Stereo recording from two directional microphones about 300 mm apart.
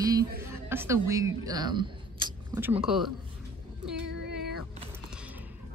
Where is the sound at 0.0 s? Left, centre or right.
Centre.